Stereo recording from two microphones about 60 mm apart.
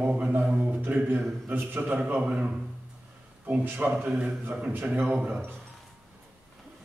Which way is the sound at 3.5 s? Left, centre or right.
Right.